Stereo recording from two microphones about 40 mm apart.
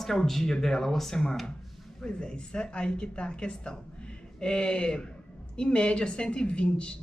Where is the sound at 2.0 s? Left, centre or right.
Left.